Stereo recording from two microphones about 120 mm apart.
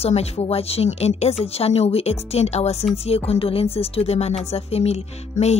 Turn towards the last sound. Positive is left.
turn(degrees=65)  # may be behind; listen again after turning